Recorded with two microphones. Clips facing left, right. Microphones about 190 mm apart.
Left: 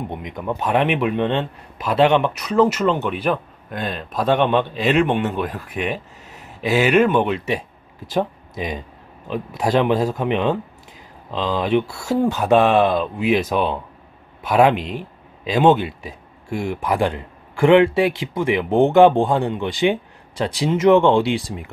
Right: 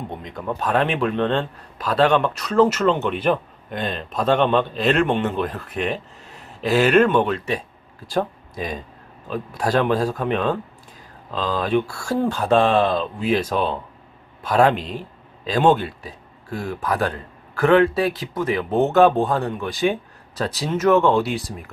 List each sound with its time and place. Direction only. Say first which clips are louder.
0.1 s speech: left 2 dB; 15° left (ahead or behind)
1.9 s speech: left 2 dB; 20° left (ahead or behind); by 4.2 s centre (ahead or behind)
4.2 s speech: left 1 dB; 15° left (ahead or behind)
5.2 s speech: even; centre (ahead or behind)
7.2 s speech: left 1 dB; 15° left (ahead or behind)